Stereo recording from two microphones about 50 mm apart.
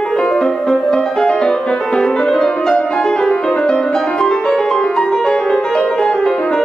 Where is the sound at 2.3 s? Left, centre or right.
Centre.